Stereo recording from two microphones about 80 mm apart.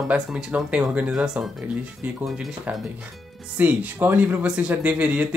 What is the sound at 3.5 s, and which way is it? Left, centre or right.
Speech, right.